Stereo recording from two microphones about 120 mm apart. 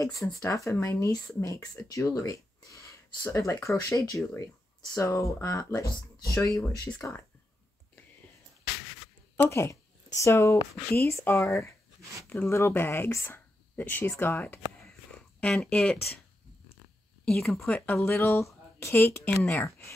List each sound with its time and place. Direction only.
0.0 s speech: 30° left (ahead or behind)
9.4 s speech: 25° left (ahead or behind); by 16.0 s 5° left (ahead or behind)
17.2 s speech: 5° left (ahead or behind)
17.9 s speech: 25° left (ahead or behind)